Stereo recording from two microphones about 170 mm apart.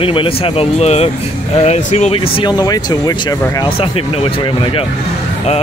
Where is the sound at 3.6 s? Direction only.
35° left (ahead or behind).